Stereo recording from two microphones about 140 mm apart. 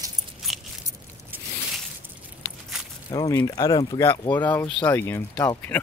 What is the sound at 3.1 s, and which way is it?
Speech, 30° left (ahead or behind).